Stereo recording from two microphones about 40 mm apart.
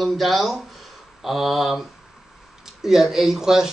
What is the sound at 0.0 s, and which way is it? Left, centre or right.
Speech, centre.